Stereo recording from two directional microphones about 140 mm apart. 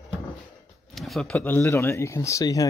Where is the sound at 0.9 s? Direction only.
Centre (ahead or behind); by 2.7 s 25° left (ahead or behind).